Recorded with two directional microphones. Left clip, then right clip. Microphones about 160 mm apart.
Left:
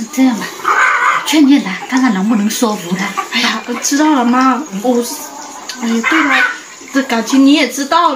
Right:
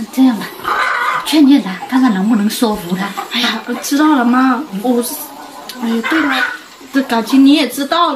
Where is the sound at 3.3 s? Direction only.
Centre (ahead or behind).